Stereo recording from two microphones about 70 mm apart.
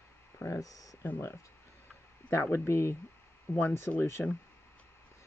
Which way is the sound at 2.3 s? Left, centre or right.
Left.